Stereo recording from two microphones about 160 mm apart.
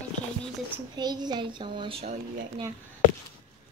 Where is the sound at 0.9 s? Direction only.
25° right (ahead or behind).